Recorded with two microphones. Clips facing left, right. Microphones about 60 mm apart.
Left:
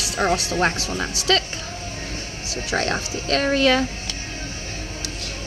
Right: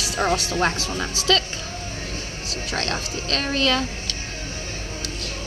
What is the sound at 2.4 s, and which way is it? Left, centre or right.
Speech, centre.